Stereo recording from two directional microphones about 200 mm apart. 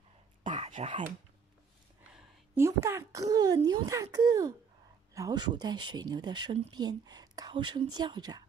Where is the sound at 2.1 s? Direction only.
15° right (ahead or behind).